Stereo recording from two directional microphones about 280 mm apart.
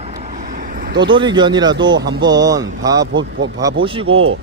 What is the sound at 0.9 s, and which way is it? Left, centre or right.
A man's voice, centre.